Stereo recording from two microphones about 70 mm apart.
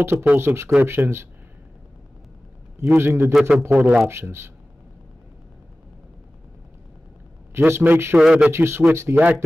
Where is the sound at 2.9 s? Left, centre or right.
Right.